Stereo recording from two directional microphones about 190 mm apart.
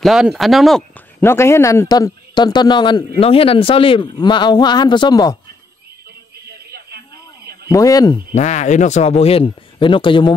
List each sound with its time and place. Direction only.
0.0 s speech: centre (ahead or behind)
1.2 s speech: 15° left (ahead or behind)
7.7 s speech: 20° left (ahead or behind)
8.4 s speech: 40° left (ahead or behind)